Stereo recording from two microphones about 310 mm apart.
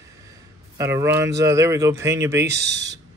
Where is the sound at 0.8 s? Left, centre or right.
Centre.